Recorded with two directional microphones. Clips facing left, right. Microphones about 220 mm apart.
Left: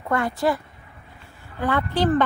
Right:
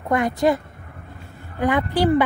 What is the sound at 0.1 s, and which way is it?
Speech, 20° right (ahead or behind).